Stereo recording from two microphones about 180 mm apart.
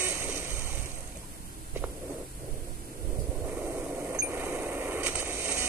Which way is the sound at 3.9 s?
10° right (ahead or behind).